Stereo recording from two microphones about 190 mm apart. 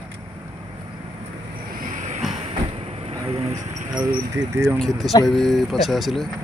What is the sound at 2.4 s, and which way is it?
Cricket, 30° right (ahead or behind).